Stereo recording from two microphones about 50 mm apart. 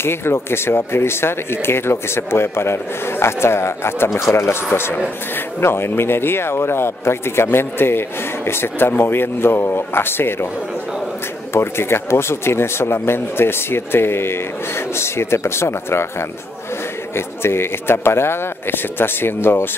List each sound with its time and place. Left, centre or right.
0.0 s speech: left
11.5 s speech: left